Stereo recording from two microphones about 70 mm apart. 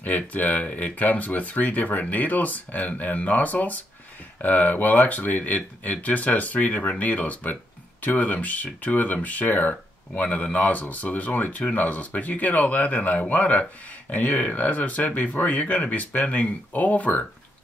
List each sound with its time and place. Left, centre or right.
0.0 s speech: left